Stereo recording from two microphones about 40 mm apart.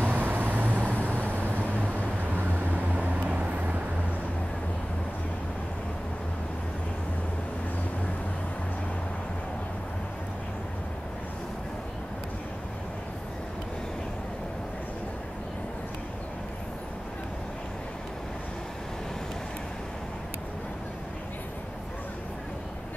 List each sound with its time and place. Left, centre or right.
0.0 s vehicle: right
0.8 s vehicle: left
2.3 s vehicle: right
3.0 s vehicle: right